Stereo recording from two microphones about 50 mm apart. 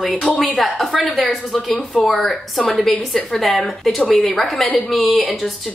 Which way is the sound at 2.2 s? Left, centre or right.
Centre.